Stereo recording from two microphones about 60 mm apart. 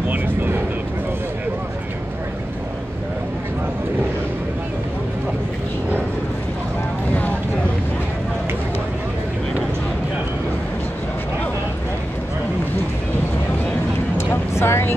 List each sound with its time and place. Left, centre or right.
0.1 s vehicle: right
14.1 s vehicle: left